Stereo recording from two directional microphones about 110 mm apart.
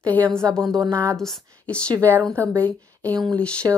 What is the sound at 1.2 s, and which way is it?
A woman's voice, 5° left (ahead or behind).